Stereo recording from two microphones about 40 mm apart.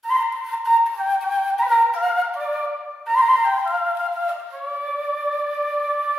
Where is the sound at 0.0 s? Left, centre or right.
Centre.